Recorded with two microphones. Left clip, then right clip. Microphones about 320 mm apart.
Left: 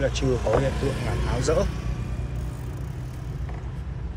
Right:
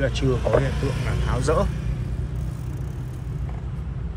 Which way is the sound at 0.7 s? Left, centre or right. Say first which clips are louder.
Left 1 dB; left.